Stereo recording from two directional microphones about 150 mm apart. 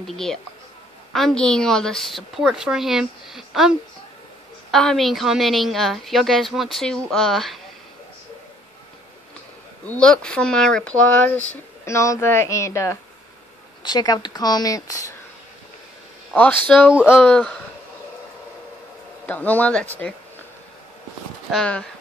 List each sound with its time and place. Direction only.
0.0 s a woman's voice: centre (ahead or behind)
9.8 s speech: 5° left (ahead or behind); by 15.1 s 20° left (ahead or behind)
16.3 s speech: 10° left (ahead or behind)
19.2 s speech: 10° left (ahead or behind)
21.5 s a woman's voice: 5° left (ahead or behind)